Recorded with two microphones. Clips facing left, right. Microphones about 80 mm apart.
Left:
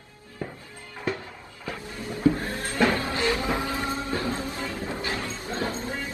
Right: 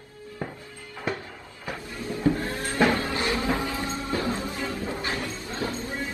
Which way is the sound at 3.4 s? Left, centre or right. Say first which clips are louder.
Even; left.